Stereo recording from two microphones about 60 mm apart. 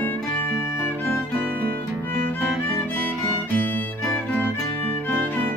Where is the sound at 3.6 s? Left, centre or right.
Left.